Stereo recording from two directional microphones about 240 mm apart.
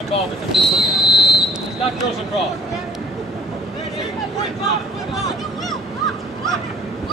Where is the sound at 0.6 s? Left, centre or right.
Centre.